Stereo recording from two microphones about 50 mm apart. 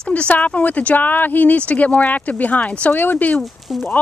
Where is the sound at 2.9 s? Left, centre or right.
Left.